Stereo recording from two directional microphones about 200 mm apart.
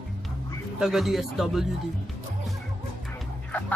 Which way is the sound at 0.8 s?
Centre (ahead or behind).